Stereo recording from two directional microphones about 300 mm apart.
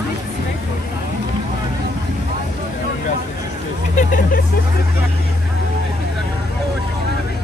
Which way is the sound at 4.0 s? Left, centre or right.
Left.